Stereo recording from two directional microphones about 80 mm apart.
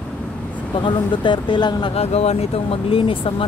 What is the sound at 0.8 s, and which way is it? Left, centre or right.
Speech, left.